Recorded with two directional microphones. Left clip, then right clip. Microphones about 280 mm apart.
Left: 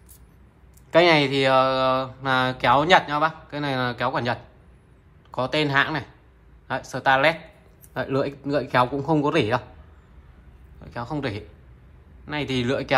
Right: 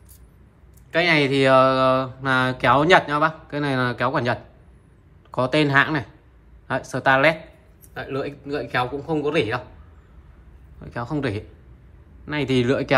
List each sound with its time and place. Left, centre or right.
0.8 s speech: centre
7.9 s speech: centre
10.8 s speech: centre